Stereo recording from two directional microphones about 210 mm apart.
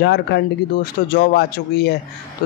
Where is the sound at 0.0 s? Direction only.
50° left (ahead or behind).